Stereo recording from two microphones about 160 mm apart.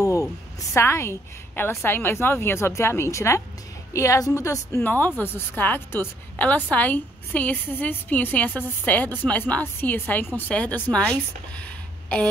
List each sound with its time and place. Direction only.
0.0 s a woman's voice: 20° left (ahead or behind)